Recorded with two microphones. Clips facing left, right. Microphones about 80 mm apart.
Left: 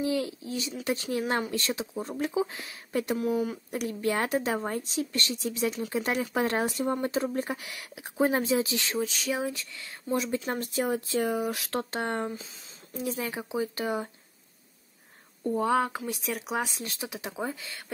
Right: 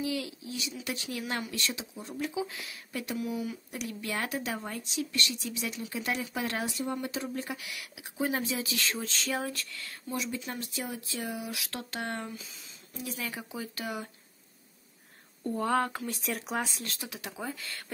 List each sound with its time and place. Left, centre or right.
0.0 s speech: left
4.0 s speech: left
9.0 s speech: centre
10.1 s speech: left
15.4 s speech: centre
16.6 s speech: centre